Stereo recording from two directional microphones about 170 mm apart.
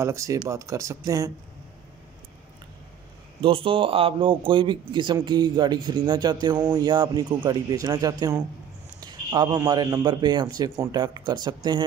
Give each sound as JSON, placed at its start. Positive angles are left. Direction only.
{"t": 0.0, "sound": "a man's voice", "side_deg": -15}
{"t": 3.3, "sound": "a man's voice", "side_deg": -30}